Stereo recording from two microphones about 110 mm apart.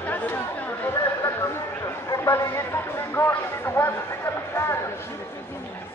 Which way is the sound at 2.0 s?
30° left (ahead or behind).